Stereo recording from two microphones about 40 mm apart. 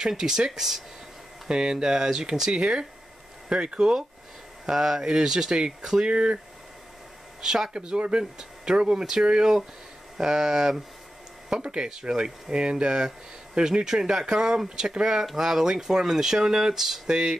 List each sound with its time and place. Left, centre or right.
0.2 s speech: centre
0.5 s speech: centre
1.5 s speech: centre
4.6 s speech: centre
7.4 s speech: centre
7.7 s speech: right; by 17.1 s centre
17.1 s speech: centre